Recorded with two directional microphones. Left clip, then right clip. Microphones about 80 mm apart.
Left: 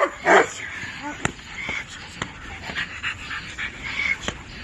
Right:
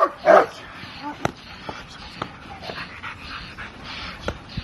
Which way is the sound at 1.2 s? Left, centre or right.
Right.